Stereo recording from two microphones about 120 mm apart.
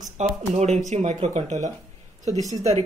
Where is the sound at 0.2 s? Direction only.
70° right (ahead or behind).